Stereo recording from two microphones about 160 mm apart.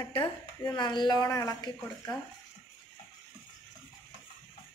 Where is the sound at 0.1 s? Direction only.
30° left (ahead or behind).